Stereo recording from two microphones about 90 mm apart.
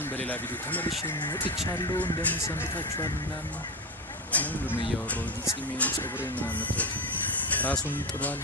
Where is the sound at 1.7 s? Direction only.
45° left (ahead or behind).